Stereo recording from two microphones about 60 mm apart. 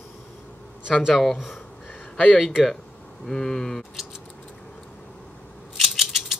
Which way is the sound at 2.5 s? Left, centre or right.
Centre.